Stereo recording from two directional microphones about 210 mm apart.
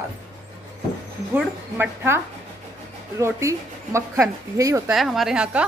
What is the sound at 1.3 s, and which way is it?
Speech, 10° right (ahead or behind).